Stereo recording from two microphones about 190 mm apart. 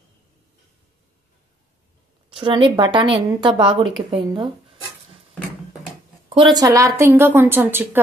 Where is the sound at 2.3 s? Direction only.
25° right (ahead or behind).